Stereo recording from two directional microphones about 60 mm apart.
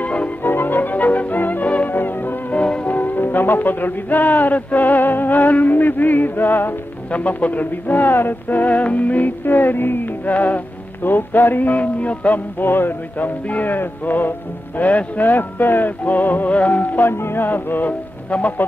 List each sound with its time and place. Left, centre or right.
0.0 s music: left
0.4 s music: left
2.5 s music: centre
12.6 s speech: left
16.0 s music: left
17.1 s speech: left